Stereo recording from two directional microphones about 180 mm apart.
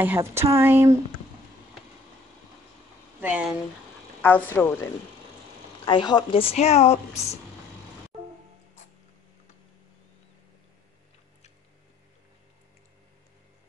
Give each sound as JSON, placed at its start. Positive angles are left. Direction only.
{"t": 0.0, "sound": "a woman's voice", "side_deg": -15}
{"t": 3.2, "sound": "speech", "side_deg": -10}
{"t": 4.2, "sound": "speech", "side_deg": 10}
{"t": 5.9, "sound": "speech", "side_deg": 25}